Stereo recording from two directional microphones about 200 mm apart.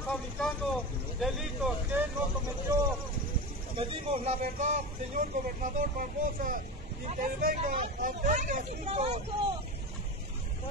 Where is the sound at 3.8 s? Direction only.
30° right (ahead or behind).